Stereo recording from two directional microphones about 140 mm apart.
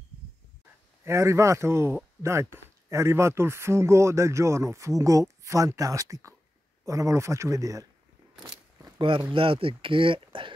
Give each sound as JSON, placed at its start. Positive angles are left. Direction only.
{"t": 1.0, "sound": "speech", "side_deg": -20}
{"t": 8.5, "sound": "a sound", "side_deg": -25}
{"t": 9.3, "sound": "speech", "side_deg": -40}